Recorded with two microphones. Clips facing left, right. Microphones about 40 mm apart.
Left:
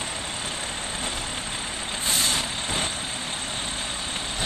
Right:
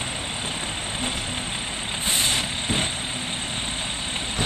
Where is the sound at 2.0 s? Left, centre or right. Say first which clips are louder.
Right 1 dB; right.